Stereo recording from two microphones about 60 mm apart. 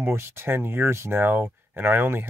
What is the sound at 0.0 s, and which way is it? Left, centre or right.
Speech, right.